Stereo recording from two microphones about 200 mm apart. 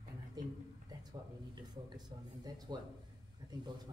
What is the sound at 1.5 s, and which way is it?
Speech, 20° right (ahead or behind).